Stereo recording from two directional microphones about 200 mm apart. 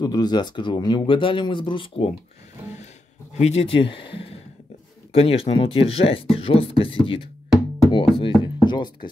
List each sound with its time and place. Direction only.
0.0 s speech: 20° left (ahead or behind)
3.3 s speech: 30° left (ahead or behind)
8.6 s music: 20° left (ahead or behind)